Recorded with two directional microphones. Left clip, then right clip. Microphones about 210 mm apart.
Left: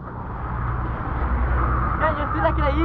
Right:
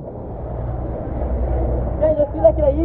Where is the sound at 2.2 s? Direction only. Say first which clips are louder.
Right 7 dB; 5° left (ahead or behind).